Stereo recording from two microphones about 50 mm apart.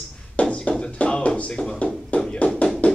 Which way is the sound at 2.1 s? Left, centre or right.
Left.